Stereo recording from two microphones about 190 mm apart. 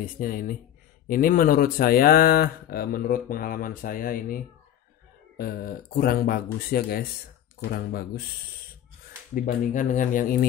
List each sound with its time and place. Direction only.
0.0 s speech: 50° left (ahead or behind)
5.4 s speech: 50° left (ahead or behind)
9.3 s speech: 40° left (ahead or behind)